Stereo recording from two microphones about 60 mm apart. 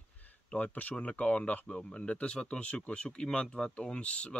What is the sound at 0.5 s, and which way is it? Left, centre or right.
Speech, left.